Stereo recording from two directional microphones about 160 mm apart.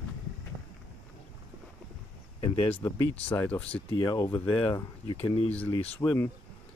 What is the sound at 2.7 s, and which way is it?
Speech, 15° left (ahead or behind).